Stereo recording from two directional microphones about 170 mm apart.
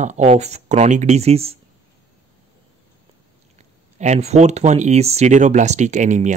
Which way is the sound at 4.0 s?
40° right (ahead or behind).